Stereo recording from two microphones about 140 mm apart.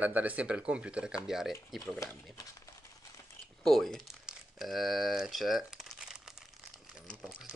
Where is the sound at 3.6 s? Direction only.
Centre (ahead or behind).